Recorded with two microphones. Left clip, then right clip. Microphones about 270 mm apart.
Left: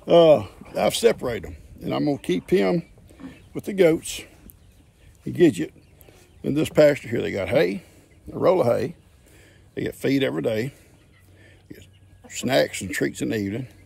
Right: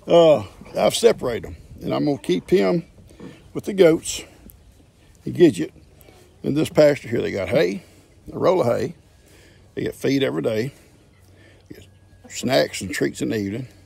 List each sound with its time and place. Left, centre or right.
0.0 s a man's voice: centre